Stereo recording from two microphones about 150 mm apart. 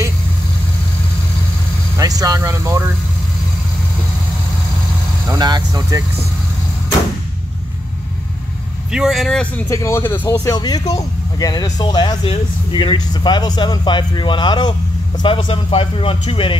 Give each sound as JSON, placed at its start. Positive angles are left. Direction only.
{"t": 2.0, "sound": "speech", "side_deg": -25}
{"t": 5.3, "sound": "speech", "side_deg": -25}
{"t": 8.9, "sound": "speech", "side_deg": 0}
{"t": 9.7, "sound": "speech", "side_deg": 20}
{"t": 10.5, "sound": "speech", "side_deg": 25}